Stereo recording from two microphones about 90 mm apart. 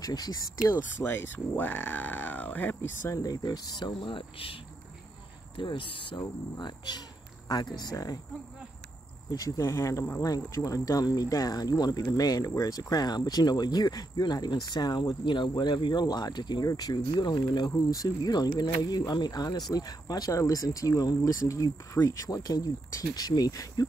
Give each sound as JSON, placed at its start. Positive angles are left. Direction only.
{"t": 0.0, "sound": "speech", "side_deg": 45}
{"t": 0.9, "sound": "speech", "side_deg": 25}
{"t": 3.2, "sound": "speech", "side_deg": 45}
{"t": 5.6, "sound": "speech", "side_deg": 70}
{"t": 6.1, "sound": "speech", "side_deg": 40}
{"t": 6.6, "sound": "speech", "side_deg": 50}
{"t": 9.3, "sound": "speech", "side_deg": 35}